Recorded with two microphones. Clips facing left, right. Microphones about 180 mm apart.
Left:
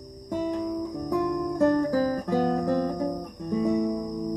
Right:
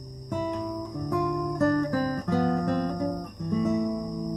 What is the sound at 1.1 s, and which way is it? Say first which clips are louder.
Music: left 1 dB; centre (ahead or behind).